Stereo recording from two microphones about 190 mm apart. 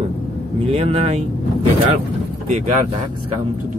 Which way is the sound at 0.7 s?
30° right (ahead or behind).